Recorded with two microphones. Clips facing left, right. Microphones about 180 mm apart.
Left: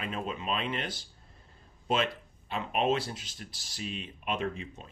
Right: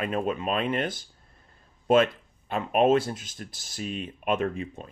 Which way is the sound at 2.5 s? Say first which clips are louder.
Right 7 dB; 50° right (ahead or behind).